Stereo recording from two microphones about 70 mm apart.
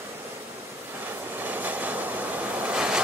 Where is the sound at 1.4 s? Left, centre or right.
Right.